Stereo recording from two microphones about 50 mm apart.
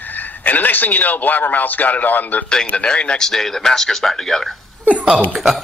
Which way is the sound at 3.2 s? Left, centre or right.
Centre.